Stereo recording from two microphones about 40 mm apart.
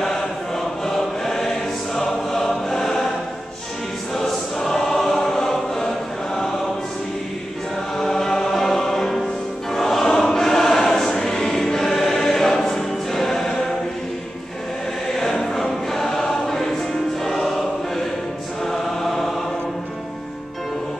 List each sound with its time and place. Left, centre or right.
0.8 s choir: centre
4.2 s choir: centre
8.0 s music: centre
15.1 s choir: centre